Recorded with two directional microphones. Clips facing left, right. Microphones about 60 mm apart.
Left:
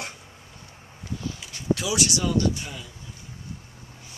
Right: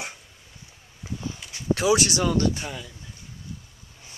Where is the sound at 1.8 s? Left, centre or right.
Right.